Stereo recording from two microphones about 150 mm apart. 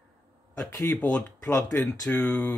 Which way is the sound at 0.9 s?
5° left (ahead or behind).